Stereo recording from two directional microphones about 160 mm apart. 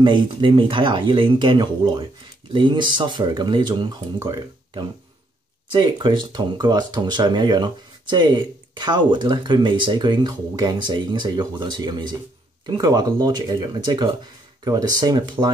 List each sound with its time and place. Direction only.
0.0 s speech: 30° right (ahead or behind)